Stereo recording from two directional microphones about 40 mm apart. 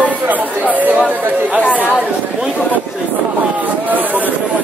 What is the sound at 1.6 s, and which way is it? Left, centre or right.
Chatter, left.